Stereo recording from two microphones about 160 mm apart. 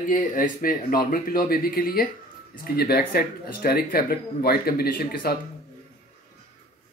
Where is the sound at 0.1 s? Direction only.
55° left (ahead or behind).